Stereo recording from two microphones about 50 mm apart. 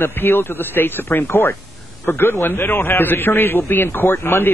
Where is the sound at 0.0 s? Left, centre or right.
Left.